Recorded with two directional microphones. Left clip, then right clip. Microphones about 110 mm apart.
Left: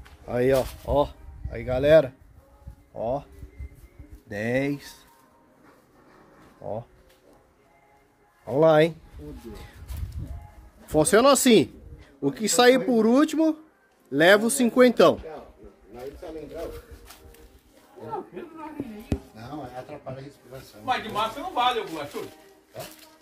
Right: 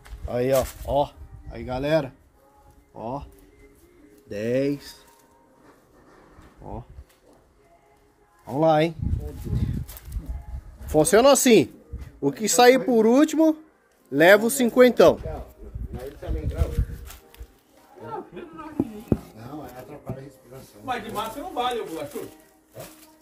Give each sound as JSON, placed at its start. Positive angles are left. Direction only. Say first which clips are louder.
{"t": 0.3, "sound": "speech", "louder": "even", "side_deg": 45}
{"t": 4.3, "sound": "speech", "louder": "right 2 dB", "side_deg": 65}
{"t": 8.5, "sound": "speech", "louder": "left 2 dB", "side_deg": 65}
{"t": 10.9, "sound": "speech", "louder": "right 2 dB", "side_deg": 0}
{"t": 18.3, "sound": "a sound", "louder": "even", "side_deg": 5}
{"t": 20.8, "sound": "speech", "louder": "left 3 dB", "side_deg": -20}